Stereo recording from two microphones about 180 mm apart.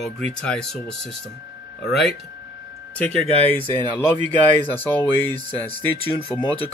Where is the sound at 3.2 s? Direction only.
35° left (ahead or behind).